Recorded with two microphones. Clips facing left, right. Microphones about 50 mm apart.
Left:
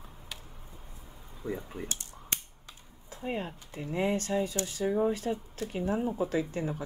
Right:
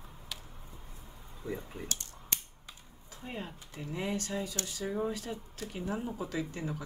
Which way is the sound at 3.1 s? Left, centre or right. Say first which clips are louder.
Left 7 dB; left.